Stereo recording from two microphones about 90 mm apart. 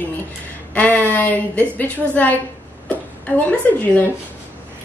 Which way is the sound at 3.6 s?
20° left (ahead or behind).